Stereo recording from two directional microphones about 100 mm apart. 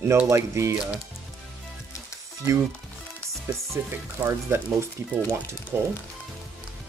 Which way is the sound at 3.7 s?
25° right (ahead or behind).